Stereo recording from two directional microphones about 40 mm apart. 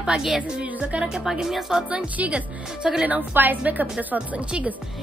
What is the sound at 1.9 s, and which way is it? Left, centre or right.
Speech, right.